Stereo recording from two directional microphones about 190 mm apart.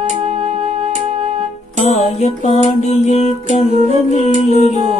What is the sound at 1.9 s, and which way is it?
Music, 35° left (ahead or behind).